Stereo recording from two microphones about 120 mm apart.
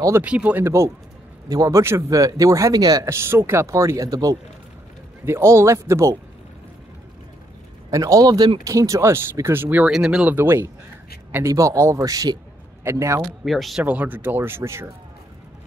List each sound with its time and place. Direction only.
0.2 s speech: 10° right (ahead or behind)
7.9 s speech: 30° right (ahead or behind); by 10.3 s 5° right (ahead or behind)
10.3 s speech: 20° right (ahead or behind)
13.5 s speech: centre (ahead or behind)
13.8 s speech: 15° right (ahead or behind)